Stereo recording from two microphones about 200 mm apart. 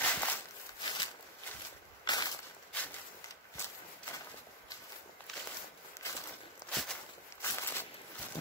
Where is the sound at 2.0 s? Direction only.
20° left (ahead or behind).